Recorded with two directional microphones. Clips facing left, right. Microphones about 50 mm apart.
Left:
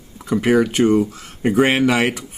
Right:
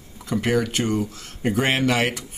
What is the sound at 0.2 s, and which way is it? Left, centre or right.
Speech, centre.